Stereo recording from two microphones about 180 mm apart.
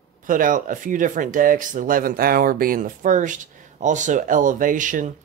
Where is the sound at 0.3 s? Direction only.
50° right (ahead or behind).